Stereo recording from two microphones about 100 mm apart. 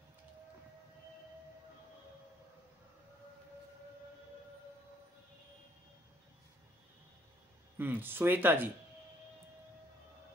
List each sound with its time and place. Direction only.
7.7 s speech: 20° right (ahead or behind)